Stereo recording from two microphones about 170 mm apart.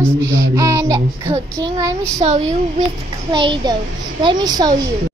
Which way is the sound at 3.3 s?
25° right (ahead or behind).